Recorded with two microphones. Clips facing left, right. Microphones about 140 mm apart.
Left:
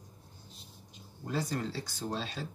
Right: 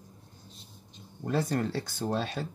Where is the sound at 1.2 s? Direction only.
60° right (ahead or behind).